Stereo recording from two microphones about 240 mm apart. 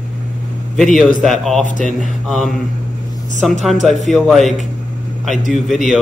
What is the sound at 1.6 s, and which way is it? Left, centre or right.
Speech, left.